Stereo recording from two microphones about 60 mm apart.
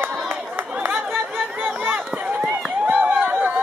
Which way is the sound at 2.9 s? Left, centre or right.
Right.